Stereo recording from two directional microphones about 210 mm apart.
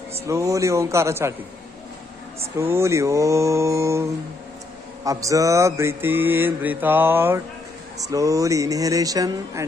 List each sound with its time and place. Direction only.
0.3 s mantra: 15° right (ahead or behind)
2.5 s mantra: 10° right (ahead or behind)